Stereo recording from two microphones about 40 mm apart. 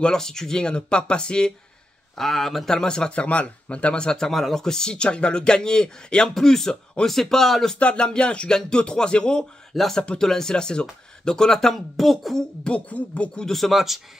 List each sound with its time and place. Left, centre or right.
0.0 s speech: centre
2.1 s speech: centre
2.7 s speech: centre
3.1 s speech: left
4.3 s speech: centre
7.8 s speech: left
11.7 s speech: centre
12.9 s speech: left
13.5 s speech: centre